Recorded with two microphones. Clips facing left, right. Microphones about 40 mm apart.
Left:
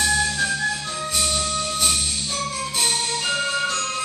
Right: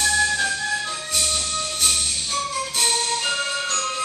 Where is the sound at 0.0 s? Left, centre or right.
Centre.